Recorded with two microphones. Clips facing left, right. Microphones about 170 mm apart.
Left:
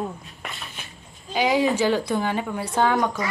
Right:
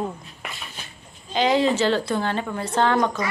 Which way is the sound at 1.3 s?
10° left (ahead or behind).